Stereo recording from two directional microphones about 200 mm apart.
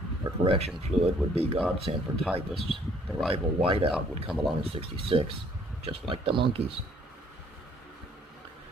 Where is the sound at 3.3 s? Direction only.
30° right (ahead or behind).